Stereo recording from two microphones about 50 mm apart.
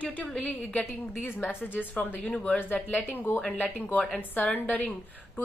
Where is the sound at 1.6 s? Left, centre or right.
Left.